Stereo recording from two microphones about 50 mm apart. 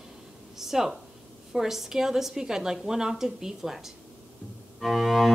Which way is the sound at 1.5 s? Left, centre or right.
Centre.